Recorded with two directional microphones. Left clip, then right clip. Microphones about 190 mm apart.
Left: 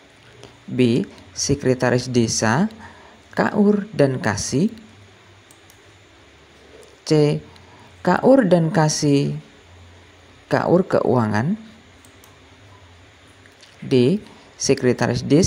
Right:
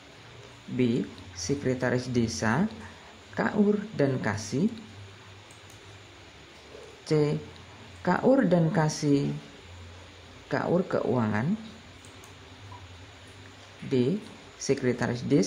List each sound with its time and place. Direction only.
0.7 s speech: 25° left (ahead or behind)
7.1 s speech: 25° left (ahead or behind)
10.5 s speech: 25° left (ahead or behind)
13.8 s speech: 25° left (ahead or behind)